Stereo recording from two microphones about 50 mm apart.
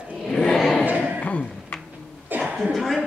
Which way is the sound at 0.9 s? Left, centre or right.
Right.